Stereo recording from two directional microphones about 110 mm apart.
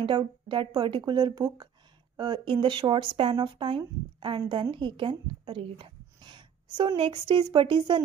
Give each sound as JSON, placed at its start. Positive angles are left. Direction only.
{"t": 0.0, "sound": "speech", "side_deg": -45}